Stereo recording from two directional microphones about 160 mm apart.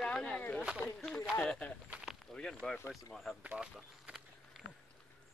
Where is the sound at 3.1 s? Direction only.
Centre (ahead or behind).